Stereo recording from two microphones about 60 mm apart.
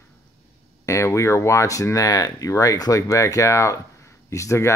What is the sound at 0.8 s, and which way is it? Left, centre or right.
Speech, left.